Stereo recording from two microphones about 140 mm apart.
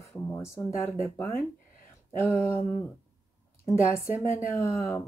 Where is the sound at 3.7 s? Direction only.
20° left (ahead or behind).